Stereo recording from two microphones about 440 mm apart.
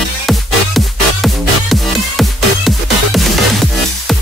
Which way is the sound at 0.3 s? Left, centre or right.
Centre.